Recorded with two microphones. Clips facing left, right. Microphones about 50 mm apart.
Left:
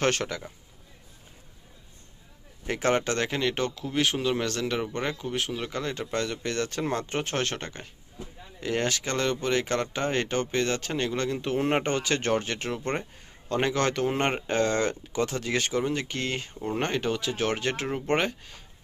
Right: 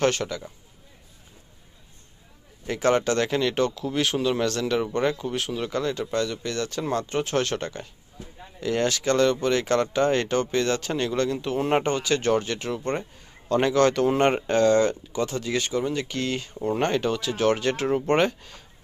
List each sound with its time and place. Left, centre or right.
0.0 s a man's voice: left
2.6 s a man's voice: left
2.9 s speech: left
6.1 s speech: left
7.3 s speech: left
11.4 s speech: left
13.5 s speech: left
14.7 s speech: left
16.6 s speech: centre
17.8 s speech: centre